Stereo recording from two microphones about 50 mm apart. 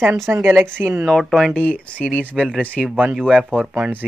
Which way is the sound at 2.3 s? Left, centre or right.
Centre.